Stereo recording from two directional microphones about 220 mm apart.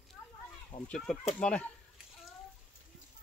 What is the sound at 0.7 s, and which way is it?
Speech, 20° left (ahead or behind).